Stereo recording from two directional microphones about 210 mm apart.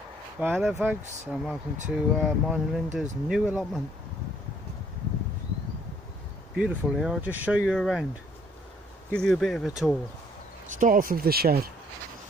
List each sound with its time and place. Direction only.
0.4 s speech: 10° right (ahead or behind)
6.5 s speech: 5° right (ahead or behind)
9.1 s speech: centre (ahead or behind)
10.7 s speech: 40° right (ahead or behind)